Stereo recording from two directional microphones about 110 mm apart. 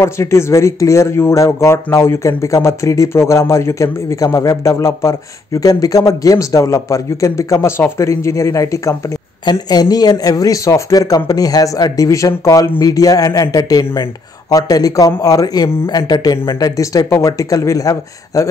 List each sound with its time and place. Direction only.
0.0 s speech: 25° left (ahead or behind)
9.4 s speech: 40° left (ahead or behind)